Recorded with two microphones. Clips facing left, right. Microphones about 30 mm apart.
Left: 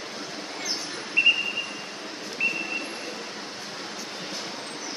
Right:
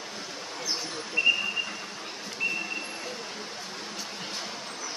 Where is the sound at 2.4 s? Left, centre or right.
Left.